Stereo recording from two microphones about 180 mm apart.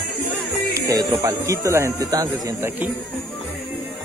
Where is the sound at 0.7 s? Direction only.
20° right (ahead or behind).